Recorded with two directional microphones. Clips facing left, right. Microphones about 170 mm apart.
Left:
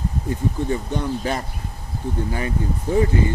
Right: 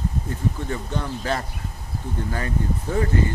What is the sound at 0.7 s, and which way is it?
Speech, 15° left (ahead or behind).